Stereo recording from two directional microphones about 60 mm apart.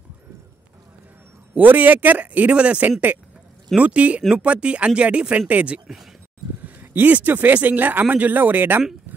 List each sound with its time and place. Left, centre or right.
1.5 s speech: right